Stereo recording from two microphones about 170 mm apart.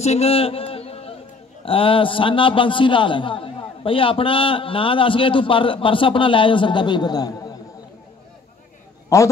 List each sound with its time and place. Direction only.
0.0 s a sound: 40° left (ahead or behind)
1.6 s a man's voice: 30° left (ahead or behind)
9.1 s a man's voice: 15° left (ahead or behind)